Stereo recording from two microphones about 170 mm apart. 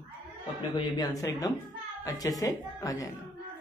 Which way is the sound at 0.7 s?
25° left (ahead or behind).